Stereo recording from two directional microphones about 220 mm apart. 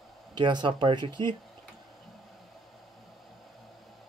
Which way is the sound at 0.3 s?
20° right (ahead or behind).